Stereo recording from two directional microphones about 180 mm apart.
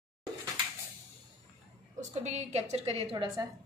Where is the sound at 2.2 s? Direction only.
40° right (ahead or behind).